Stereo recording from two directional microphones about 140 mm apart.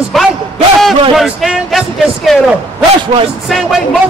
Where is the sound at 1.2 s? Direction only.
Centre (ahead or behind).